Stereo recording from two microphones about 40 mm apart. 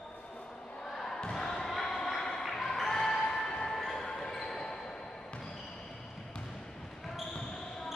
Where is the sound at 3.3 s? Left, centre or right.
Centre.